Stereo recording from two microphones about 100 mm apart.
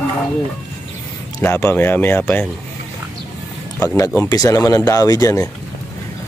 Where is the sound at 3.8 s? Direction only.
30° left (ahead or behind).